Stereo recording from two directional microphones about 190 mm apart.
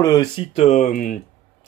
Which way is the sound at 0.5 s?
35° left (ahead or behind).